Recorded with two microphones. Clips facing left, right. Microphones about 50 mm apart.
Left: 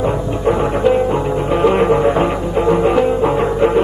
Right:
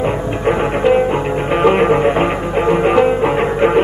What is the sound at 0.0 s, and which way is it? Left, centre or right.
Music, right.